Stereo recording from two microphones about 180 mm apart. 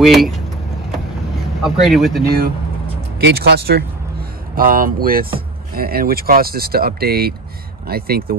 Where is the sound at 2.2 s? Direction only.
55° right (ahead or behind).